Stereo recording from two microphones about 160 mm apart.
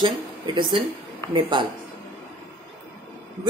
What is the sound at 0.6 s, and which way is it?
A woman's voice, 30° right (ahead or behind).